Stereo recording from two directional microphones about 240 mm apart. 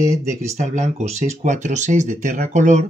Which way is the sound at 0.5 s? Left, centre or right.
Right.